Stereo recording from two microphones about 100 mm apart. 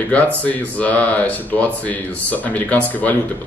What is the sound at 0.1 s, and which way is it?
Speech, 15° left (ahead or behind).